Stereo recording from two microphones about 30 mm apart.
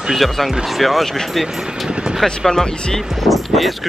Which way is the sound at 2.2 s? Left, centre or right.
Centre.